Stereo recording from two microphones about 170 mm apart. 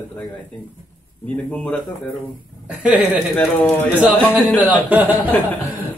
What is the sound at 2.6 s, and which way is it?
Speech, 5° right (ahead or behind).